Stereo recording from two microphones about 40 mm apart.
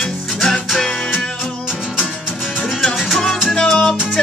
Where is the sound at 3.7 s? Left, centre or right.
Centre.